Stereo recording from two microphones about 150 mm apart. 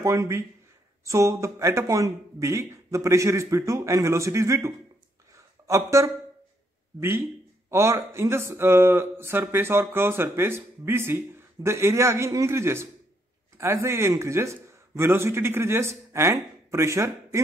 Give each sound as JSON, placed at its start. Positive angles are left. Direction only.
{"t": 0.0, "sound": "speech", "side_deg": -20}
{"t": 5.3, "sound": "a sound", "side_deg": -20}
{"t": 7.0, "sound": "a man's voice", "side_deg": -15}